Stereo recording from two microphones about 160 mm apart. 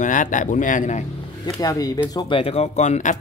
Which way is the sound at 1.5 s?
25° left (ahead or behind).